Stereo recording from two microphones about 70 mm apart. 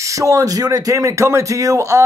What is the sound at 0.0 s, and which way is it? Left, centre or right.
Speech, right.